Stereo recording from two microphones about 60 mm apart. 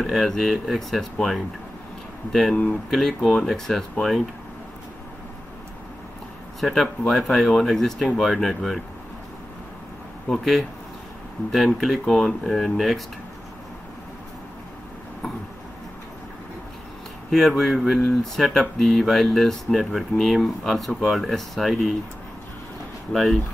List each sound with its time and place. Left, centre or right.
0.0 s speech: centre
2.5 s speech: left
2.9 s speech: centre
6.6 s speech: centre
10.2 s speech: centre
17.3 s speech: centre
23.1 s speech: centre